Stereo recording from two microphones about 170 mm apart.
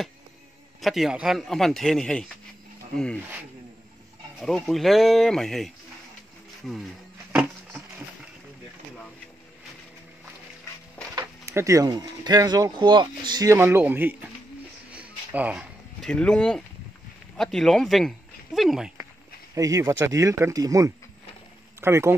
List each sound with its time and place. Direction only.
0.7 s a man's voice: centre (ahead or behind)
4.4 s a man's voice: 5° left (ahead or behind)
11.1 s speech: 15° right (ahead or behind)
14.9 s a sound: 10° right (ahead or behind)
16.0 s a man's voice: 5° left (ahead or behind)
19.5 s speech: 20° right (ahead or behind)